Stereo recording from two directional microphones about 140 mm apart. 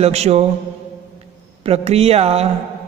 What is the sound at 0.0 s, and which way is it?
Speech, 50° right (ahead or behind).